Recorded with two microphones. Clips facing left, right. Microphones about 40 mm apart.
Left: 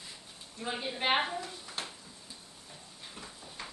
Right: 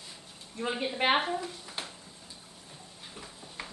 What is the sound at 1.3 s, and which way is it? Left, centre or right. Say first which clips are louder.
Speech: right 4 dB; centre.